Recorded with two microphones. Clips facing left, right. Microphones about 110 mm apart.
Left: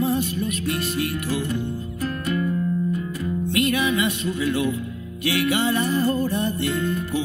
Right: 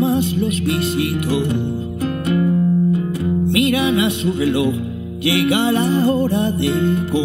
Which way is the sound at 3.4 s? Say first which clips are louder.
Right 5 dB; 20° right (ahead or behind).